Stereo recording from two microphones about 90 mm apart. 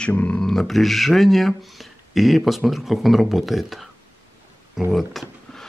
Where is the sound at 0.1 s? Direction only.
15° left (ahead or behind).